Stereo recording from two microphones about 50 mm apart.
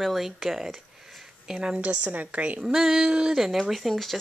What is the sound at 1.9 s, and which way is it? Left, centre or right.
Speech, right.